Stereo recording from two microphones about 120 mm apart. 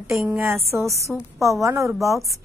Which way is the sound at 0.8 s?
25° right (ahead or behind).